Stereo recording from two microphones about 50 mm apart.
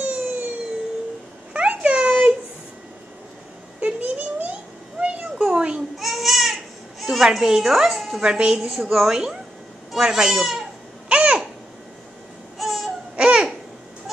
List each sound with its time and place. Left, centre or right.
0.0 s a sound: right
1.5 s a sound: right
3.8 s a sound: right
5.9 s babbling: centre
7.0 s speech: centre
8.2 s a woman's voice: centre
8.5 s a woman's voice: centre
11.1 s babbling: right
12.5 s baby cry: centre
13.1 s babbling: centre